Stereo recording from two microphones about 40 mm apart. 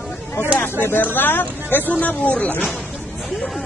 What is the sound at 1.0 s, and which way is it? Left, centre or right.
Speech, left.